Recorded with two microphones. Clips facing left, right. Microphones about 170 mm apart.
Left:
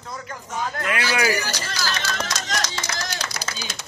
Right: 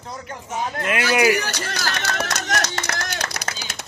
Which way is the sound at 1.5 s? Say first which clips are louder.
Right 1 dB; 65° right (ahead or behind).